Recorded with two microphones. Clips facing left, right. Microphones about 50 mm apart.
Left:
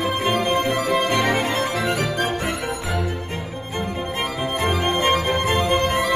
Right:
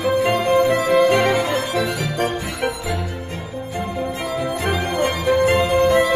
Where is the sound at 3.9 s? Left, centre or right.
Left.